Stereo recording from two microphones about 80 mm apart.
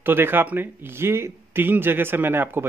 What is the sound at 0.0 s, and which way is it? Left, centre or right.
Speech, right.